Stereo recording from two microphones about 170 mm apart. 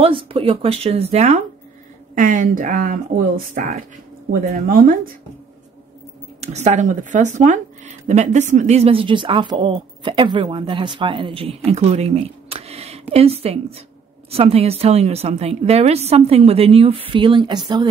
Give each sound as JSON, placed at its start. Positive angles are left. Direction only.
{"t": 0.0, "sound": "a woman's voice", "side_deg": -35}
{"t": 2.1, "sound": "speech", "side_deg": -50}
{"t": 6.4, "sound": "a woman's voice", "side_deg": -40}